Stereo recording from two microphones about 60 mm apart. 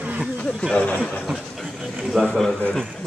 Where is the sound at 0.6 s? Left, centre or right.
Centre.